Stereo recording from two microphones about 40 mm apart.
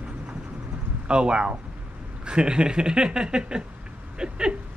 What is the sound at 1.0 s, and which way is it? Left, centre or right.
Speech, right.